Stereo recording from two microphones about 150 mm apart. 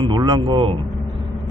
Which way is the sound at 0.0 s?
30° right (ahead or behind).